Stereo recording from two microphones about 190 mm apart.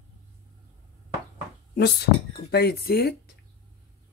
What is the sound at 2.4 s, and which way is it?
Speech, 55° left (ahead or behind).